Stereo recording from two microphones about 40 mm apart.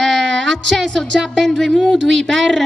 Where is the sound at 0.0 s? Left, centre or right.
Centre.